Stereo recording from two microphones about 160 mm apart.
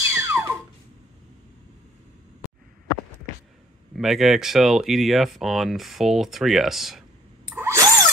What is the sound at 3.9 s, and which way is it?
Speech, centre (ahead or behind).